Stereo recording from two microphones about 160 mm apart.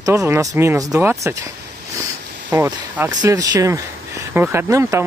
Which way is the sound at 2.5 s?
15° right (ahead or behind).